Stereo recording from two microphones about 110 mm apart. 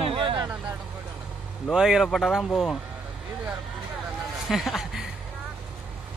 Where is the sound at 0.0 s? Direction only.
55° right (ahead or behind).